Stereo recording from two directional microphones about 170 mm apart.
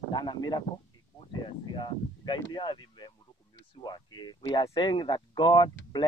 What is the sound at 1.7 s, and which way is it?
Speech, 25° left (ahead or behind).